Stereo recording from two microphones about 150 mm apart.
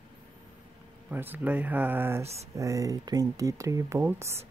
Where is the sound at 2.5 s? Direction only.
20° right (ahead or behind).